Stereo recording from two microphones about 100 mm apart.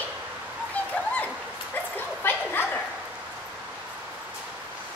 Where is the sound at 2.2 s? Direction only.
20° left (ahead or behind).